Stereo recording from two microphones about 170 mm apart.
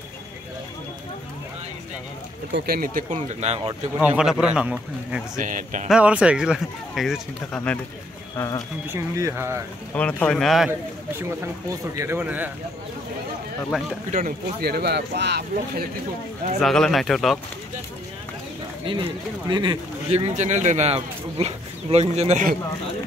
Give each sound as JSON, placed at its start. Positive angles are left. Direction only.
{"t": 2.5, "sound": "speech", "side_deg": -65}
{"t": 4.0, "sound": "speech", "side_deg": -5}
{"t": 5.4, "sound": "speech", "side_deg": -50}
{"t": 5.9, "sound": "speech", "side_deg": -5}
{"t": 8.4, "sound": "speech", "side_deg": 20}
{"t": 8.9, "sound": "speech", "side_deg": -15}
{"t": 9.9, "sound": "speech", "side_deg": 10}
{"t": 11.1, "sound": "speech", "side_deg": -15}
{"t": 13.7, "sound": "speech", "side_deg": -5}
{"t": 14.1, "sound": "speech", "side_deg": -55}
{"t": 16.5, "sound": "speech", "side_deg": 0}
{"t": 18.9, "sound": "speech", "side_deg": -30}